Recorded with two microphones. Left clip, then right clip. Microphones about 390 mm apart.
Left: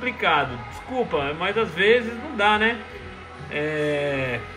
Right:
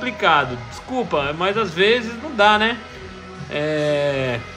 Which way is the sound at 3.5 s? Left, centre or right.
Right.